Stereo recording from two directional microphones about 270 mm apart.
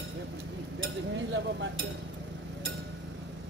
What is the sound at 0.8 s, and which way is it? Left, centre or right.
Speech, right.